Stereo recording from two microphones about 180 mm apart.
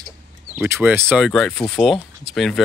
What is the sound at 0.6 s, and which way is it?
Speech, 10° right (ahead or behind).